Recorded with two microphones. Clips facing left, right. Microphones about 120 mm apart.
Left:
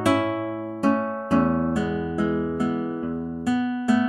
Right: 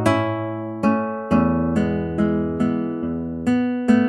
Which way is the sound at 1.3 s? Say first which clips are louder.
Right 3 dB; centre (ahead or behind).